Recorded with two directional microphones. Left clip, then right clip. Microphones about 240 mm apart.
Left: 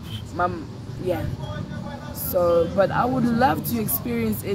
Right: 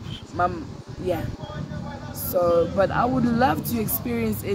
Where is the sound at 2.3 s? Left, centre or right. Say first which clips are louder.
Left 1 dB; centre.